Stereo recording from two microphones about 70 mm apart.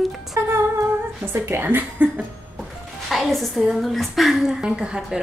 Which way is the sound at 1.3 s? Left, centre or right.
Right.